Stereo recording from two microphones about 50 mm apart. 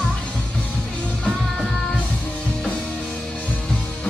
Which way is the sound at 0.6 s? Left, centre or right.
Left.